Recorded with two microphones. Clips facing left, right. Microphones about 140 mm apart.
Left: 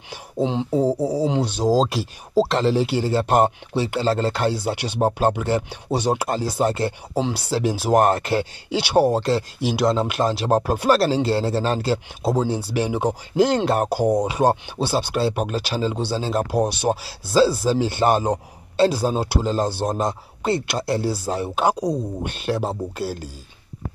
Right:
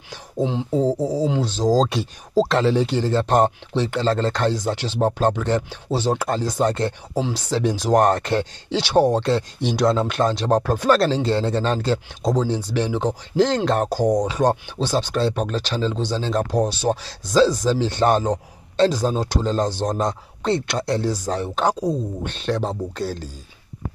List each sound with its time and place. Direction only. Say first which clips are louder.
0.1 s a sound: left 1 dB; 20° left (ahead or behind)
0.7 s speech: right 1 dB; 10° left (ahead or behind)
7.2 s speech: left 1 dB; 20° left (ahead or behind)
7.5 s speech: even; 5° left (ahead or behind)